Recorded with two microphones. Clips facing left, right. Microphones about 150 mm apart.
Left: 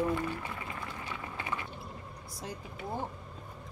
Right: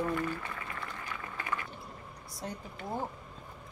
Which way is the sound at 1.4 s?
25° left (ahead or behind).